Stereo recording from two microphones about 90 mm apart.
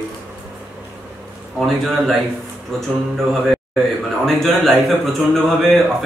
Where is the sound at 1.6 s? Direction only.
Centre (ahead or behind).